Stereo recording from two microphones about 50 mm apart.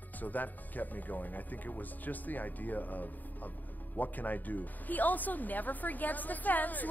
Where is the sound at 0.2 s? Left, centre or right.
Left.